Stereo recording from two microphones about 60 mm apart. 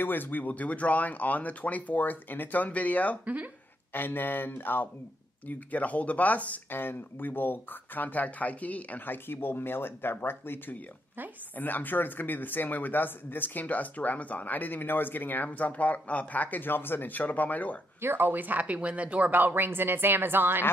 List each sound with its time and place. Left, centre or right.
0.0 s speech: left
18.0 s a woman's voice: right